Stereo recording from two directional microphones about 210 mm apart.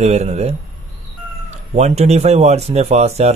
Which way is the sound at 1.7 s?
30° right (ahead or behind).